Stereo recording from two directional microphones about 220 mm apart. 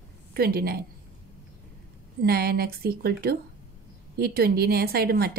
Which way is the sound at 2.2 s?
45° right (ahead or behind).